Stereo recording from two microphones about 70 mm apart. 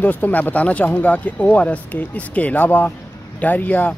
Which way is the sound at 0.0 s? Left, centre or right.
Left.